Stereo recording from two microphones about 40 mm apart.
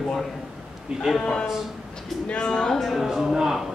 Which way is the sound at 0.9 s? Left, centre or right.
Centre.